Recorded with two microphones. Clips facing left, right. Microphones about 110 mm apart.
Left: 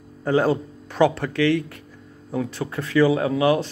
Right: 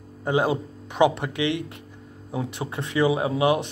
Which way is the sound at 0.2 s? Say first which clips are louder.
Left 3 dB; 15° right (ahead or behind).